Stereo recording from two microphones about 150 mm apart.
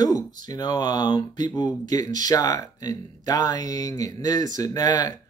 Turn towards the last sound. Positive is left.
turn(degrees=25)  # may be behind; listen again after turning